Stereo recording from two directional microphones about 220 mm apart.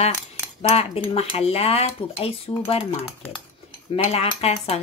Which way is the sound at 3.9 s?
25° left (ahead or behind).